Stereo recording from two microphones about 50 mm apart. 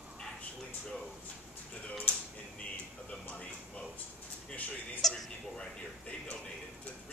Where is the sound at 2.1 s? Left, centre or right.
Left.